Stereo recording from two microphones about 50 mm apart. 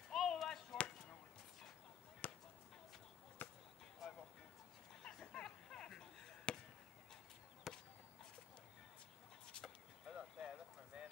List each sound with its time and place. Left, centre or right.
0.1 s chop: centre
0.7 s basketball bounce: left
2.2 s chop: left
3.4 s basketball bounce: left
4.0 s a sound: centre
5.0 s chop: centre
7.7 s a sound: centre
10.1 s clip-clop: centre
10.9 s clip-clop: centre